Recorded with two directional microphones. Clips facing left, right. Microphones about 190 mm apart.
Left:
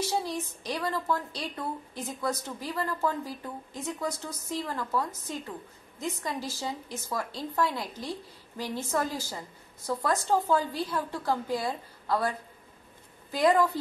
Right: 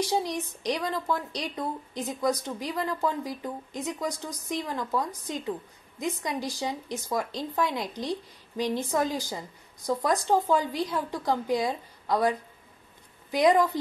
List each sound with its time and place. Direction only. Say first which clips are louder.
0.0 s a woman's voice: right 3 dB; 15° right (ahead or behind)